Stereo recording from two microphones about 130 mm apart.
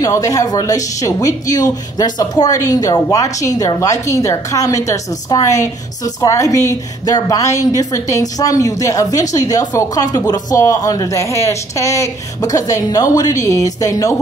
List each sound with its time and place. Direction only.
0.0 s a woman's voice: 25° left (ahead or behind)